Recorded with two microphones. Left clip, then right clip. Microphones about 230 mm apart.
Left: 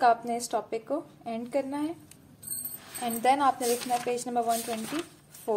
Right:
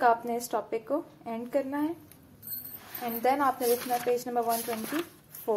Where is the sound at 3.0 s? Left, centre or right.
Centre.